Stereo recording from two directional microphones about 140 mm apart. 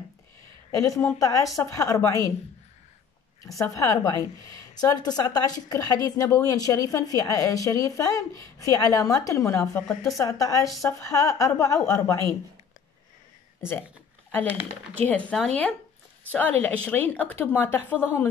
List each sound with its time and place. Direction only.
0.7 s a woman's voice: 20° left (ahead or behind)
3.4 s a woman's voice: 25° left (ahead or behind)
15.0 s a woman's voice: 10° left (ahead or behind)